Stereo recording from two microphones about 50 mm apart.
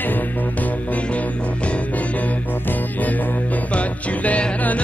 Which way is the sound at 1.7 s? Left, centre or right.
Left.